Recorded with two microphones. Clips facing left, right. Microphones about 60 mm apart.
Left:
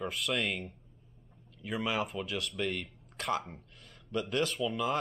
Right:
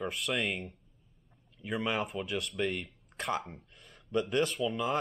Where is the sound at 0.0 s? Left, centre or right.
Centre.